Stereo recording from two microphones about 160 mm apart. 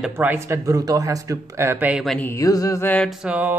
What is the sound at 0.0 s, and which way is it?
Speech, 10° right (ahead or behind).